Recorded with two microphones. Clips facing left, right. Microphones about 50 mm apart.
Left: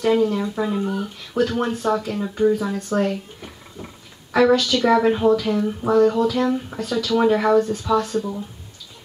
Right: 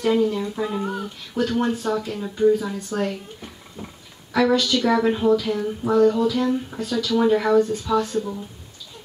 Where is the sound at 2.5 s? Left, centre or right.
Left.